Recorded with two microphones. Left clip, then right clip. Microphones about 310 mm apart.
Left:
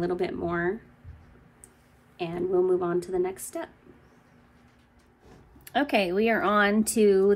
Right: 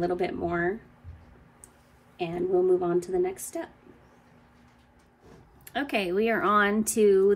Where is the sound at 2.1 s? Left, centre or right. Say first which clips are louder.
Even; centre.